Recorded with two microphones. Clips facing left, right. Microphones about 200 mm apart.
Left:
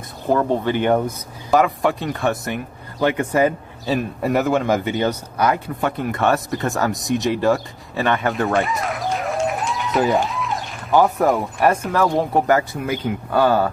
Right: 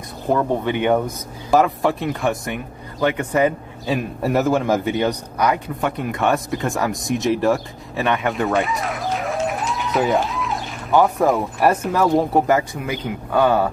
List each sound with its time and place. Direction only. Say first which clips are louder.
0.3 s a man's voice: left 1 dB; centre (ahead or behind)